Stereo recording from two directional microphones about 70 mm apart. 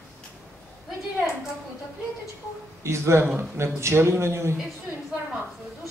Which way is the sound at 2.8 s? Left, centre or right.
Right.